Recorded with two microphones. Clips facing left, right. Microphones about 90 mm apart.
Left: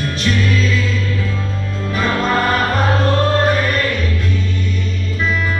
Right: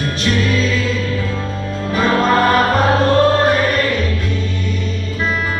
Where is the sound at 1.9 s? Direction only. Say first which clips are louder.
Right 3 dB; 20° right (ahead or behind).